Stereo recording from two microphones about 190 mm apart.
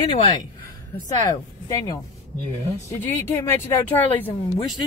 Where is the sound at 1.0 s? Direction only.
20° left (ahead or behind).